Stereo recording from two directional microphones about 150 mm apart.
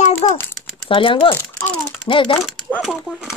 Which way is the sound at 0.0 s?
55° left (ahead or behind).